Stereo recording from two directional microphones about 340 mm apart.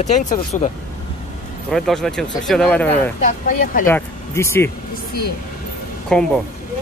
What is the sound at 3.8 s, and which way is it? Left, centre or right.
Speech, centre.